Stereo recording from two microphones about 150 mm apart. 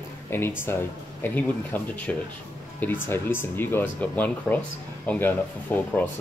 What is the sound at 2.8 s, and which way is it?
Speech, 15° left (ahead or behind).